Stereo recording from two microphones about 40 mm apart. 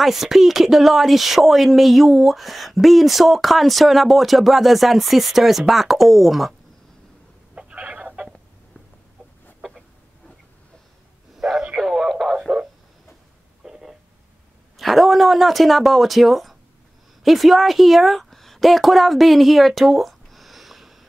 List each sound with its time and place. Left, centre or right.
0.0 s speech: centre
7.5 s chicken: right
9.6 s chicken: centre
11.3 s radio: centre
13.7 s a sound: centre
14.8 s speech: centre